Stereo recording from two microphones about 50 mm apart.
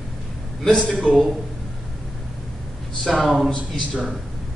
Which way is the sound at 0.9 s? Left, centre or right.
Centre.